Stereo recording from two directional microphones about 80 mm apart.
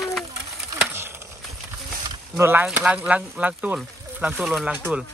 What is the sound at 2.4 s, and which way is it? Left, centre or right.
Speech, right.